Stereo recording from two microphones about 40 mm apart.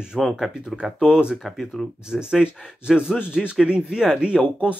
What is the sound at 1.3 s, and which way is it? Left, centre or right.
Speech, centre.